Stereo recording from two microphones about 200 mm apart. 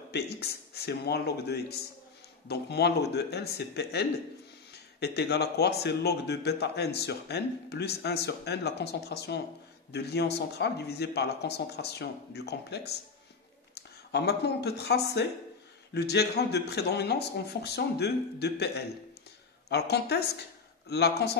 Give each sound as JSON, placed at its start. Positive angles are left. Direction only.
{"t": 0.1, "sound": "a man's voice", "side_deg": 55}